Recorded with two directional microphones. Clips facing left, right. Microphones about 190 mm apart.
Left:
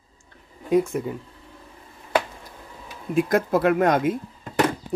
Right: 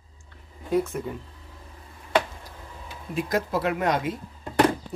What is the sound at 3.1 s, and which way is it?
Speech, 50° left (ahead or behind).